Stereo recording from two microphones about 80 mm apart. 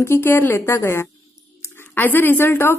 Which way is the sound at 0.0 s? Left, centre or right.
Left.